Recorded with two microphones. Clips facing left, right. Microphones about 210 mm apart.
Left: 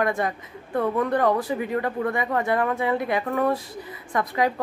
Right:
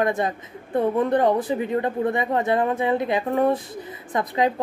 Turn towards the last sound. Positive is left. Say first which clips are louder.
# right 1 dB
turn(degrees=-20)  # may be behind; listen again after turning